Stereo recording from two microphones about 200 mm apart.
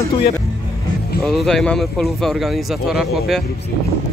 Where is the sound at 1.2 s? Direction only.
Centre (ahead or behind).